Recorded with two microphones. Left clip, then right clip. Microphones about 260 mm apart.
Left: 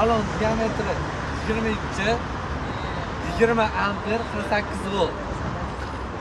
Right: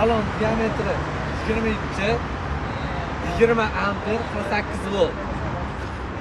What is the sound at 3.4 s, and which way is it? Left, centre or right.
Speech, left.